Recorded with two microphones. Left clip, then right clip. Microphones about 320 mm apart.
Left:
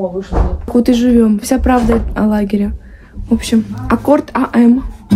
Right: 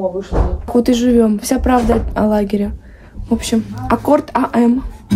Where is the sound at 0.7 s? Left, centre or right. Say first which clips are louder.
Left 1 dB; centre.